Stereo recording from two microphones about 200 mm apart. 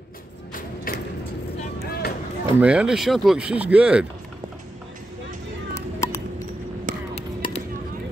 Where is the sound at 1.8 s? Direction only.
50° left (ahead or behind).